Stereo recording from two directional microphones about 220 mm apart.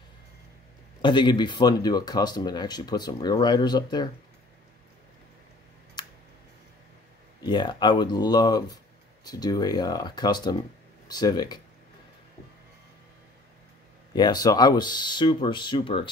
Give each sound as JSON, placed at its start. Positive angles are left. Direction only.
{"t": 1.0, "sound": "speech", "side_deg": 20}
{"t": 6.0, "sound": "a sound", "side_deg": 20}
{"t": 7.4, "sound": "speech", "side_deg": 20}
{"t": 14.1, "sound": "speech", "side_deg": 20}